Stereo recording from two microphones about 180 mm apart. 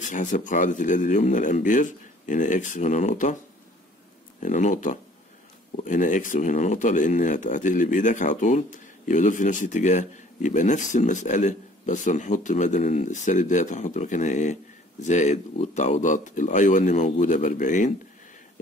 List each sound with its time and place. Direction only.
0.0 s speech: 45° left (ahead or behind)
4.4 s speech: 45° left (ahead or behind)